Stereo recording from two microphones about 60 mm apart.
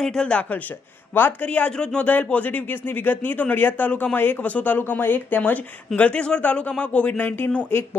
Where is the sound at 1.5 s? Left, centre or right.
Left.